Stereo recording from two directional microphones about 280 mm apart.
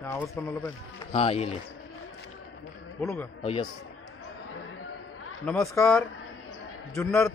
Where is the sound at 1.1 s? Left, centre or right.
Left.